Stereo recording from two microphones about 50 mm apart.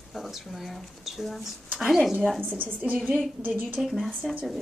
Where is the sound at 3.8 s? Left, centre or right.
Centre.